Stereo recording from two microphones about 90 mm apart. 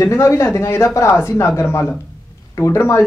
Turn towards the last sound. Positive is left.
turn(degrees=30)  # may be behind; listen again after turning